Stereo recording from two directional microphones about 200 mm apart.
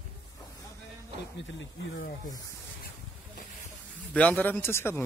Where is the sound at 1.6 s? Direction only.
50° left (ahead or behind).